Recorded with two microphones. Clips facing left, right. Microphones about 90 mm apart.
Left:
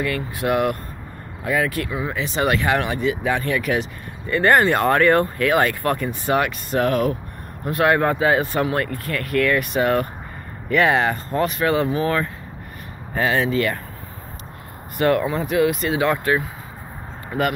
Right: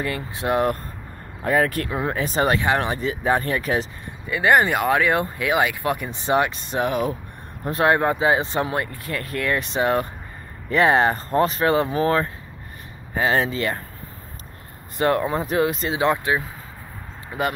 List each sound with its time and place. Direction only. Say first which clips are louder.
0.0 s speech: left 3 dB; 30° right (ahead or behind)
1.4 s speech: right 1 dB; 40° right (ahead or behind)
4.3 s speech: left 2 dB; 10° right (ahead or behind)
7.6 s speech: left 1 dB; 30° right (ahead or behind)
13.3 s speech: left 2 dB; 30° right (ahead or behind)
15.0 s speech: left 1 dB; 25° right (ahead or behind)